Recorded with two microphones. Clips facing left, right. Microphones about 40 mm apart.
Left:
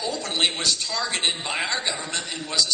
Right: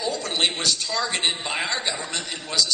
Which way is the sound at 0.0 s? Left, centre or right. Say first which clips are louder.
Right 1 dB; centre.